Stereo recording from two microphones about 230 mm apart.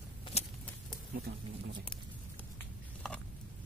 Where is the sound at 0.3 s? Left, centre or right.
Left.